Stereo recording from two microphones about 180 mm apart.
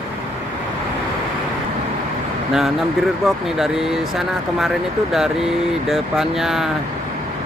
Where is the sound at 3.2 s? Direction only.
Centre (ahead or behind).